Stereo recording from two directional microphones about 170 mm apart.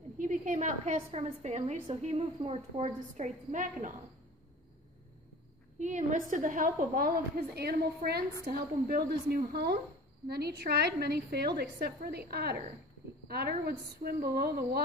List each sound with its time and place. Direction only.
0.2 s a woman's voice: 45° right (ahead or behind)
5.8 s a woman's voice: 45° right (ahead or behind); by 14.8 s 65° right (ahead or behind)